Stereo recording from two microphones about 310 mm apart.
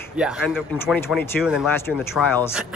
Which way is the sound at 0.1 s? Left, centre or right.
Centre.